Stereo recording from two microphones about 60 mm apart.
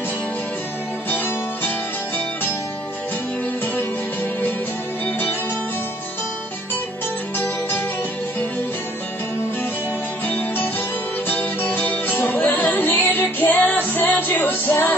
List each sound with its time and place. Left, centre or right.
1.1 s music: left
7.3 s music: left
10.2 s music: left